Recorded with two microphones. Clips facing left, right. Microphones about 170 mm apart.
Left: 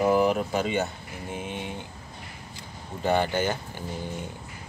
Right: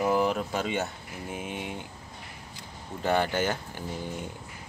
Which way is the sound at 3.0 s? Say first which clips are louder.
Left 2 dB; centre (ahead or behind).